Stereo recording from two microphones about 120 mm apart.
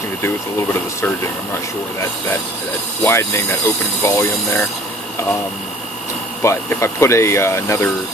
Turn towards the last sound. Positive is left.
turn(degrees=25)  # may be behind; listen again after turning